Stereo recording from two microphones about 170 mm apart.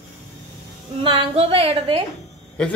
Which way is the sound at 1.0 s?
35° right (ahead or behind).